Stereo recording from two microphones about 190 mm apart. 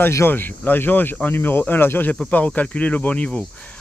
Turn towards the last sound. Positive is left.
turn(degrees=5)  # may be behind; listen again after turning